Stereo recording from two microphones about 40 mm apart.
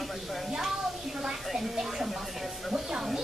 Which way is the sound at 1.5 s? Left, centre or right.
Centre.